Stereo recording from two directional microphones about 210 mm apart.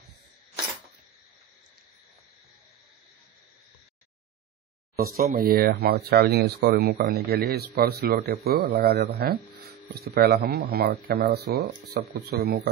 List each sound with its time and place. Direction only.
4.9 s speech: 45° right (ahead or behind)